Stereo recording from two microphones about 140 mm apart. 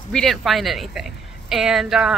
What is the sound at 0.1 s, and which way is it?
Speech, centre (ahead or behind).